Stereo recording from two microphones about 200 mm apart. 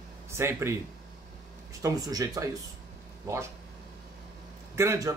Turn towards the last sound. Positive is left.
turn(degrees=-15)  # may be behind; listen again after turning